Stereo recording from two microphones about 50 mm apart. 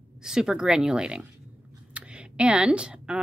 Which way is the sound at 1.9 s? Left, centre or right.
Right.